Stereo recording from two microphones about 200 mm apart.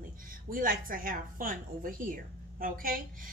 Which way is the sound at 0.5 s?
45° right (ahead or behind).